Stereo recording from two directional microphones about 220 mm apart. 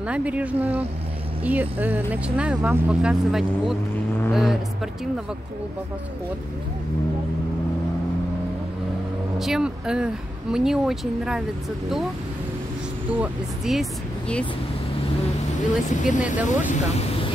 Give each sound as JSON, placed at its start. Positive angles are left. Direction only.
{"t": 0.0, "sound": "speech", "side_deg": -5}
{"t": 9.4, "sound": "speech", "side_deg": 0}
{"t": 13.1, "sound": "speech", "side_deg": -5}
{"t": 15.9, "sound": "speech", "side_deg": 35}